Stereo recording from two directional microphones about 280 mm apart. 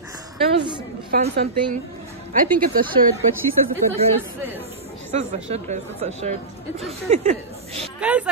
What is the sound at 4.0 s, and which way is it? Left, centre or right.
Speech, right.